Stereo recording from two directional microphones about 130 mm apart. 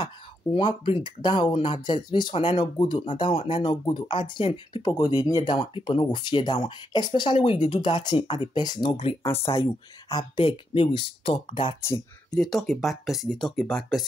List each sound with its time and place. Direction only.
0.6 s speech: 35° left (ahead or behind)
4.8 s speech: 30° left (ahead or behind)
12.3 s speech: centre (ahead or behind)